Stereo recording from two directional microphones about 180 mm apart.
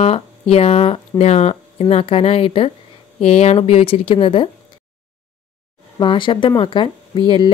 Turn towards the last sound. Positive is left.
turn(degrees=30)  # may be behind; listen again after turning